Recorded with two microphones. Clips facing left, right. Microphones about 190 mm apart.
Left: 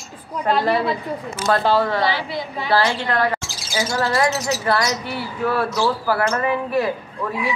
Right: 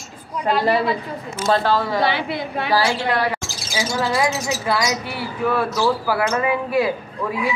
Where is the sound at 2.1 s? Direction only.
60° right (ahead or behind).